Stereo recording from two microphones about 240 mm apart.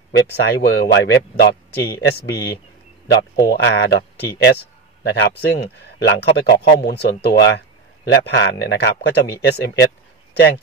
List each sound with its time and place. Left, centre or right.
0.1 s speech: left